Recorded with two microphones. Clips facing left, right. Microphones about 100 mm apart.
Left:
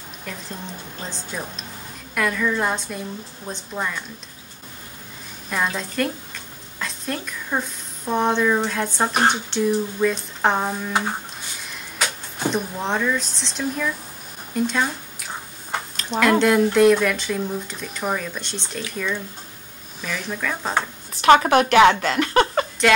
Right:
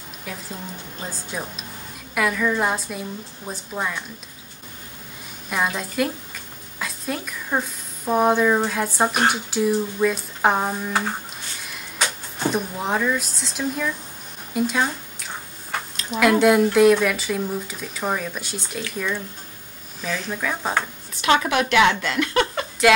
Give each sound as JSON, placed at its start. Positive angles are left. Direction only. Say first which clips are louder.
{"t": 0.2, "sound": "speech", "louder": "even", "side_deg": -5}
{"t": 5.5, "sound": "a woman's voice", "louder": "even", "side_deg": -5}
{"t": 12.4, "sound": "speech", "louder": "even", "side_deg": -5}
{"t": 16.1, "sound": "speech", "louder": "right 1 dB", "side_deg": -5}
{"t": 20.2, "sound": "speech", "louder": "left 1 dB", "side_deg": -10}
{"t": 21.2, "sound": "a woman's voice", "louder": "left 5 dB", "side_deg": 45}